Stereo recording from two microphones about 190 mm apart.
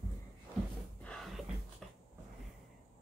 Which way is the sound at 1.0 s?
Centre (ahead or behind).